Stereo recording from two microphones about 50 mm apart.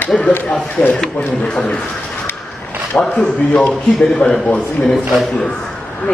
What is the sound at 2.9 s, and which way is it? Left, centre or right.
Speech, centre.